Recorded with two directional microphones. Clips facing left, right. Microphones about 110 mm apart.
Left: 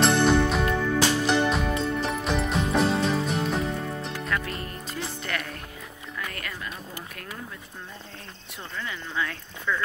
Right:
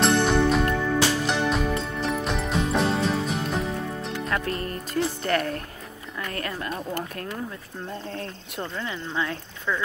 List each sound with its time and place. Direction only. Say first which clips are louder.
0.0 s music: even; centre (ahead or behind)
4.3 s music: right 4 dB; 40° right (ahead or behind)
6.3 s speech: right 6 dB; 40° right (ahead or behind)
8.7 s speech: right 1 dB; 25° right (ahead or behind)